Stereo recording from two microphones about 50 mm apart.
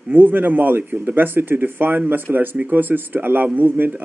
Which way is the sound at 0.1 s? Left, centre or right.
Right.